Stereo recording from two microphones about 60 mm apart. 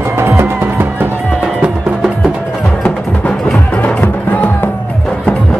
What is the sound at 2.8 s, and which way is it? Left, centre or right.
Music, centre.